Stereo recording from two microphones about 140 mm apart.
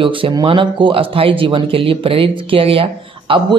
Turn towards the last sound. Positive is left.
turn(degrees=-40)  # may be behind; listen again after turning